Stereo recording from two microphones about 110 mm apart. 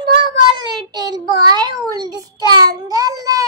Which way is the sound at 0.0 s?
45° right (ahead or behind).